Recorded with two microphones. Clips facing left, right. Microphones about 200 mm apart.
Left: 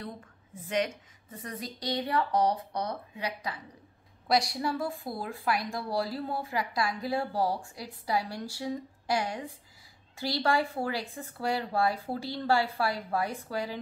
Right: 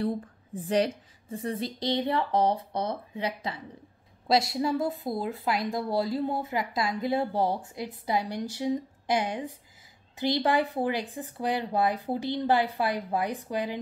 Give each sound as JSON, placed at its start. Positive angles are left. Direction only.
{"t": 0.0, "sound": "a woman's voice", "side_deg": -35}